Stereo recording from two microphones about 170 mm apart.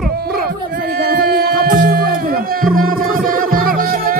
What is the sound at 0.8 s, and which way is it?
Music, 70° right (ahead or behind).